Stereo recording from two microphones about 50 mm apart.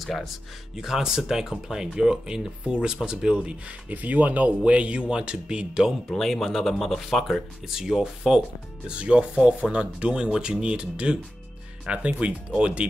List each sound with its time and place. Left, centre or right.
0.0 s speech: centre
3.9 s speech: right; by 5.9 s centre
6.1 s speech: centre
8.8 s speech: right